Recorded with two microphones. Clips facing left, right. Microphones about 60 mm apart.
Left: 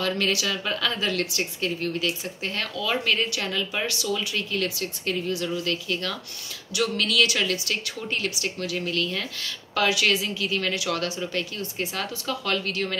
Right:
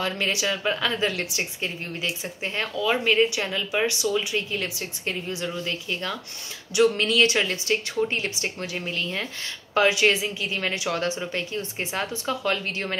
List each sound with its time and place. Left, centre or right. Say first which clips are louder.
0.0 s a woman's voice: left 1 dB; right